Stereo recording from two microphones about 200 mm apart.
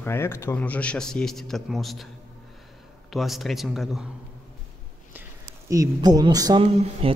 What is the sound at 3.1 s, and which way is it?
Speech, centre (ahead or behind).